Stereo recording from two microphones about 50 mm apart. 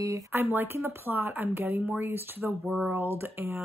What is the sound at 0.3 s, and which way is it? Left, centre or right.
Speech, right.